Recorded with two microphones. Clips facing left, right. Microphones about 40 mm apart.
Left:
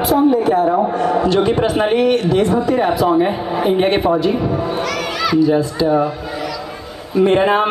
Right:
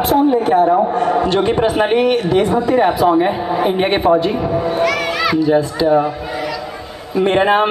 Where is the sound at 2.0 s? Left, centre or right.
Right.